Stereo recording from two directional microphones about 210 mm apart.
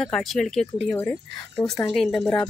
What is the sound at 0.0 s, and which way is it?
Speech, centre (ahead or behind).